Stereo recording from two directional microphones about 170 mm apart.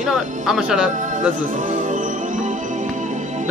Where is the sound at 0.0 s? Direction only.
5° right (ahead or behind).